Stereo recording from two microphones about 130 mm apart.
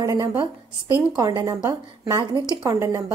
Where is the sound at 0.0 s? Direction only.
25° right (ahead or behind).